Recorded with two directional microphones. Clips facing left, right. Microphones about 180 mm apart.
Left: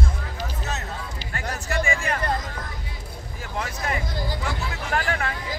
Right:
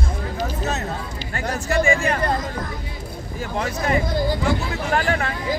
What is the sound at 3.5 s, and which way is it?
Speech, 25° right (ahead or behind).